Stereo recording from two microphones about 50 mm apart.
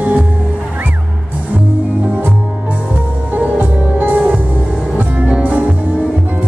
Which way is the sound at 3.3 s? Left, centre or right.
Right.